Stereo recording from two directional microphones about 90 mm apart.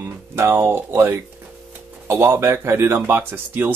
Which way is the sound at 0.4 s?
30° right (ahead or behind).